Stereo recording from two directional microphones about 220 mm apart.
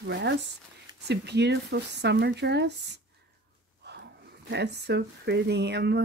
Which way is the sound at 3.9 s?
50° right (ahead or behind).